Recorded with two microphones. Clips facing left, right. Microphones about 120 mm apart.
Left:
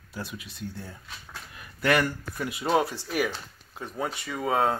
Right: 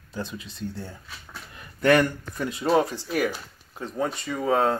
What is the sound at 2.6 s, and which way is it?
Speech, centre (ahead or behind).